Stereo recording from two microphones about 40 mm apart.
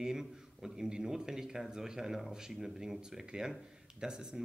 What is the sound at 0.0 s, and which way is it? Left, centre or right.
A man's voice, centre.